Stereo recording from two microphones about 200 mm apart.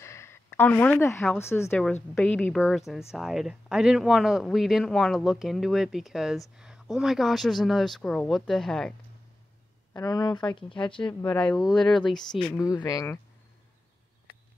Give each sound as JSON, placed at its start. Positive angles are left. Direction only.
{"t": 0.0, "sound": "a woman's voice", "side_deg": 15}
{"t": 9.9, "sound": "speech", "side_deg": 20}
{"t": 11.1, "sound": "speech", "side_deg": 5}
{"t": 12.5, "sound": "speech", "side_deg": 15}